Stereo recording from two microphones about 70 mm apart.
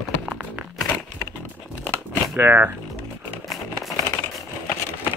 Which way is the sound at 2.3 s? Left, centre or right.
Right.